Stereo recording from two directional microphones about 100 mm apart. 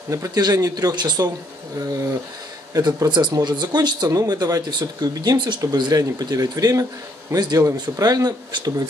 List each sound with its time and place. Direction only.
0.1 s speech: 35° right (ahead or behind)
2.7 s speech: 40° right (ahead or behind)